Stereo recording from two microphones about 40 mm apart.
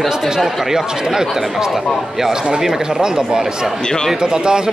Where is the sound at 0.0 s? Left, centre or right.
Centre.